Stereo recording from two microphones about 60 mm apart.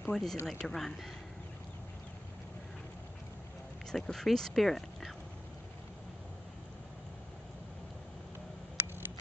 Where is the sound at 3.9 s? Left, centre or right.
Centre.